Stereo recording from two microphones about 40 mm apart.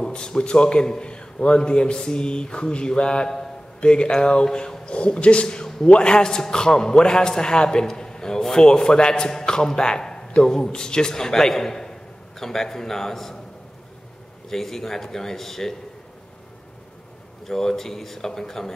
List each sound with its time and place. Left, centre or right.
0.0 s a man's voice: centre
14.5 s a man's voice: centre
17.5 s a man's voice: centre